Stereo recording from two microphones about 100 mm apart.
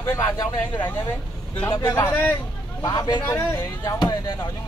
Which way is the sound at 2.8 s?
40° left (ahead or behind).